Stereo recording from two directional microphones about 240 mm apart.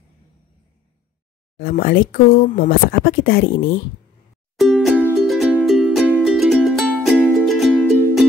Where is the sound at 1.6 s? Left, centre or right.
Left.